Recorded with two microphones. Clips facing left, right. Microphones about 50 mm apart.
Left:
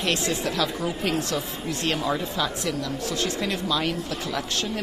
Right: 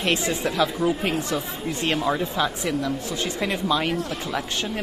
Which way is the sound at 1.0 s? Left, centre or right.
Right.